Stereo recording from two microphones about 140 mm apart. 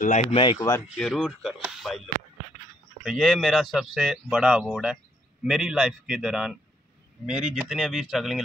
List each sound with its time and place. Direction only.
0.0 s speech: 55° left (ahead or behind)
0.6 s speech: 20° left (ahead or behind)
0.9 s speech: centre (ahead or behind)
3.0 s speech: centre (ahead or behind)